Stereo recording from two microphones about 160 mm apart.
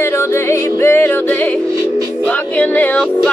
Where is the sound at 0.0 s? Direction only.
15° left (ahead or behind).